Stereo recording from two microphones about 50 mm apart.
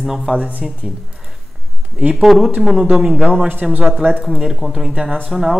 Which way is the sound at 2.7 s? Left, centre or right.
Centre.